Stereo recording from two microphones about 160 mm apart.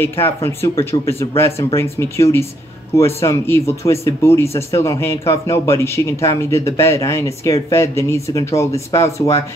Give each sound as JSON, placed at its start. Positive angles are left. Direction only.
{"t": 0.2, "sound": "speech", "side_deg": 15}